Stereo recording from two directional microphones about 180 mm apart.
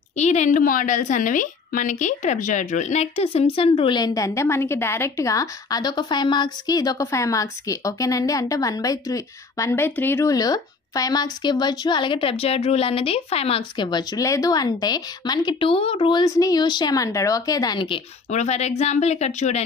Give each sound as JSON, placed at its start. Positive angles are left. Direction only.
{"t": 0.1, "sound": "a woman's voice", "side_deg": 40}
{"t": 18.3, "sound": "speech", "side_deg": 40}